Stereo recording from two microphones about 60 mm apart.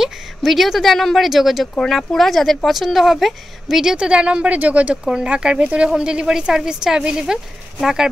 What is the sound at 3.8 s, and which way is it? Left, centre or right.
A woman's voice, centre.